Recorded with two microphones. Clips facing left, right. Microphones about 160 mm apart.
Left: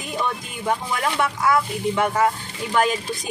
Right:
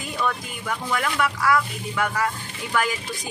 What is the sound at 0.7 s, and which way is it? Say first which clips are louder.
A woman's voice: left 3 dB; 25° left (ahead or behind).